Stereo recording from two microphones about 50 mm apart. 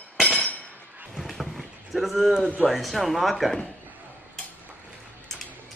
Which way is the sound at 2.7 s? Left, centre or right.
Centre.